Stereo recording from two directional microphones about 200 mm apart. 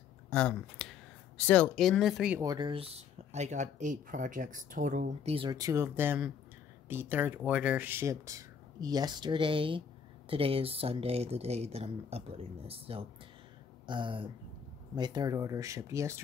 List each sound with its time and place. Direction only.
0.3 s speech: 5° left (ahead or behind)
2.4 s speech: 20° right (ahead or behind)